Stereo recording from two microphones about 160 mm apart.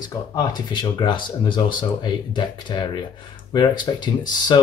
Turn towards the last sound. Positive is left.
turn(degrees=30)  # may be behind; listen again after turning